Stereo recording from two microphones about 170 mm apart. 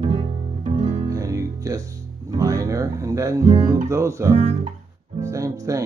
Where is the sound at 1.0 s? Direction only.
20° right (ahead or behind).